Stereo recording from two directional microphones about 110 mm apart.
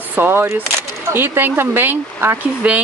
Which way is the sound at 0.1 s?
20° right (ahead or behind).